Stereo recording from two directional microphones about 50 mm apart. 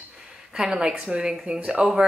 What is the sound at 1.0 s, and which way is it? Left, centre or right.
Speech, right.